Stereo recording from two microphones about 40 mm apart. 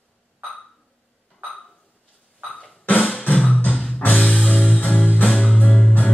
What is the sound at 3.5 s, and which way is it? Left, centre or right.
Music, left.